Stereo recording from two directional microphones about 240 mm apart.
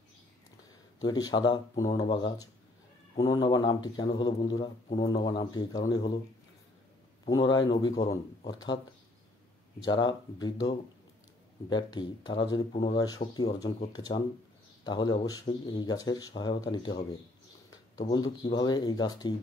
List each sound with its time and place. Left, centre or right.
1.0 s speech: centre
7.2 s speech: centre
9.8 s speech: centre
18.1 s speech: centre